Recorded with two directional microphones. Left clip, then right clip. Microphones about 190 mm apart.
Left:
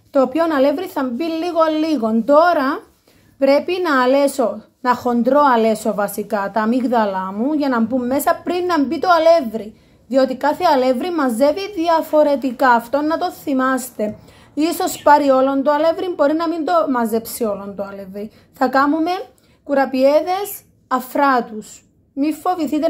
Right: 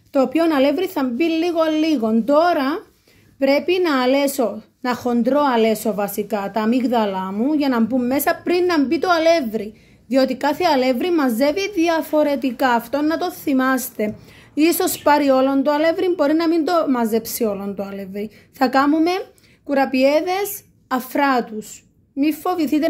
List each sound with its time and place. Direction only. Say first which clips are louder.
0.1 s a woman's voice: left 1 dB; 15° right (ahead or behind)